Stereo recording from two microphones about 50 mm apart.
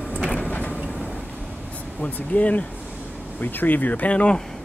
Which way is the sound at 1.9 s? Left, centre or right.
Left.